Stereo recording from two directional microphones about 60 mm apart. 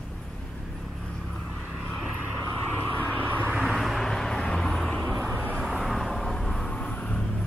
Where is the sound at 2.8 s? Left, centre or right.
Left.